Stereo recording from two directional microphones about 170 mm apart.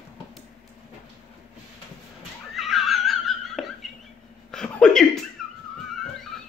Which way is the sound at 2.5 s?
Centre (ahead or behind).